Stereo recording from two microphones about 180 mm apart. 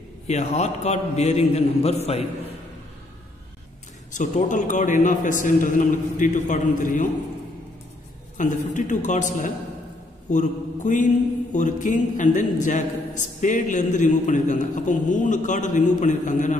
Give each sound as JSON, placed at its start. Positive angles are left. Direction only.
{"t": 0.3, "sound": "a man's voice", "side_deg": 40}
{"t": 4.1, "sound": "a man's voice", "side_deg": 45}
{"t": 8.4, "sound": "a man's voice", "side_deg": 45}
{"t": 10.3, "sound": "mantra", "side_deg": 45}
{"t": 11.5, "sound": "a man's voice", "side_deg": 45}